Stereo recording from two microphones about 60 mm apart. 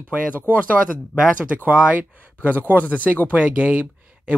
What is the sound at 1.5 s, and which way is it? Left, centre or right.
Speech, right.